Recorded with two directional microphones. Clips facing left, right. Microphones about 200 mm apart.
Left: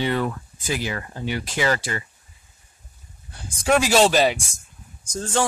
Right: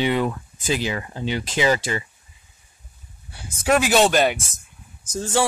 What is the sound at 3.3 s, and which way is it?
Speech, 5° right (ahead or behind).